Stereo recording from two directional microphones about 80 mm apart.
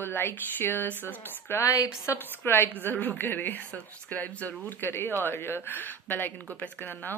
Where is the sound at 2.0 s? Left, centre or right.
Left.